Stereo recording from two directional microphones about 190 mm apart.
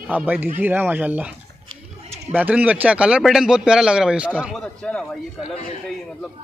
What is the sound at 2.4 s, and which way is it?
Speech, 5° right (ahead or behind).